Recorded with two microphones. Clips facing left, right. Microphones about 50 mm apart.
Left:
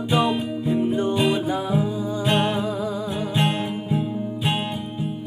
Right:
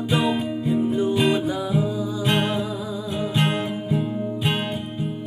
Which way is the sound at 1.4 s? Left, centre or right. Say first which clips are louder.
Even; left.